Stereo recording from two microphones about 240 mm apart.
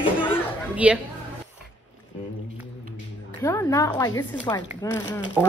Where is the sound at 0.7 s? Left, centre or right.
Centre.